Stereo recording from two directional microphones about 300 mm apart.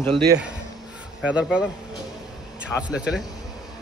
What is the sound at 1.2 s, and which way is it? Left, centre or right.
Speech, centre.